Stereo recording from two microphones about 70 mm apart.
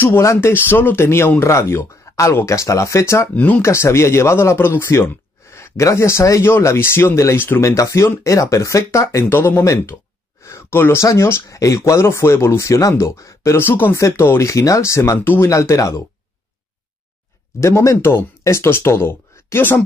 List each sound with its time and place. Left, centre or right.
0.2 s speech: left
3.3 s speech: centre
3.6 s speech: left
7.6 s speech: left
9.4 s speech: left
13.6 s speech: left
13.9 s speech: left
17.6 s speech: left